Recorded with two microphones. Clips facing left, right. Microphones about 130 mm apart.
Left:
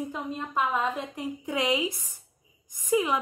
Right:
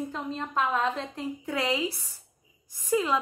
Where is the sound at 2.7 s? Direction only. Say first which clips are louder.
Left 1 dB; 15° left (ahead or behind).